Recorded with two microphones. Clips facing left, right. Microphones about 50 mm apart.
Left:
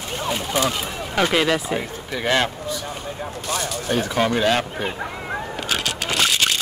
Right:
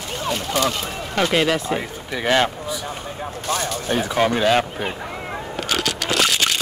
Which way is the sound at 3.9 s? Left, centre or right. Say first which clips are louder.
Right 1 dB; centre.